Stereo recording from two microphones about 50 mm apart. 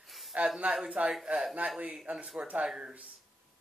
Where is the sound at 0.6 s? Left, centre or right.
Right.